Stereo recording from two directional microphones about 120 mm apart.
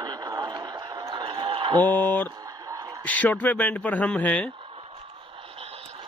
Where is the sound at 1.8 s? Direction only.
15° left (ahead or behind).